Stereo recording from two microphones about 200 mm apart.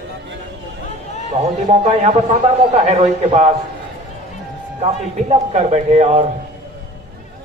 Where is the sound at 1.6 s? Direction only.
35° right (ahead or behind).